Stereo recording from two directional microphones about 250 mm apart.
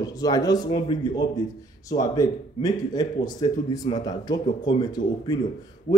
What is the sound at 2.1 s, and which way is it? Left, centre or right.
A man's voice, centre.